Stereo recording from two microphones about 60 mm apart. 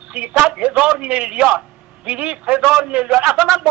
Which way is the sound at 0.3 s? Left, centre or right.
Centre.